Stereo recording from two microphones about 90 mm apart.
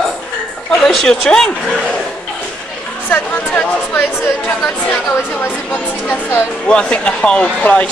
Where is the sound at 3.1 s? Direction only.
20° left (ahead or behind).